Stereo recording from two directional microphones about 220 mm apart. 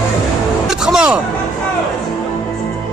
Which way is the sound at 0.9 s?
5° right (ahead or behind).